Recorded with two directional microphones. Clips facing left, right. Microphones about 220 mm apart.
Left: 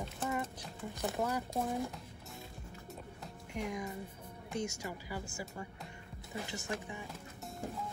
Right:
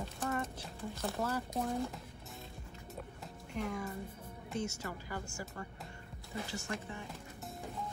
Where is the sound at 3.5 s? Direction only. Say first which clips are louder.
Even; 15° left (ahead or behind).